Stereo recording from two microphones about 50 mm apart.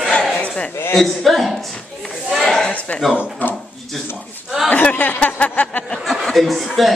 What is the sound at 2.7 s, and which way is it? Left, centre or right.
Speech, left.